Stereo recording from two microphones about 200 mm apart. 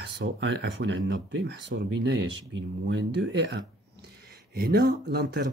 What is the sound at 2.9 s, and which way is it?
Speech, 65° right (ahead or behind).